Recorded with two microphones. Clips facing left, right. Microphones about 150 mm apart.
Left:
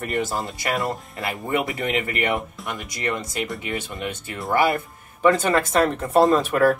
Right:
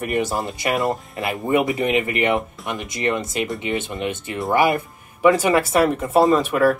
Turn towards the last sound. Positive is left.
turn(degrees=0)  # may be behind; listen again after turning